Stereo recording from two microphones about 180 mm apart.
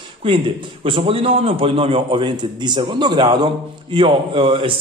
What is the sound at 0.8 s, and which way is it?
Speech, 30° right (ahead or behind).